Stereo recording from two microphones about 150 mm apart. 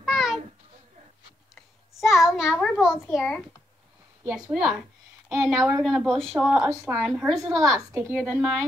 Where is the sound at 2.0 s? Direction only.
Centre (ahead or behind).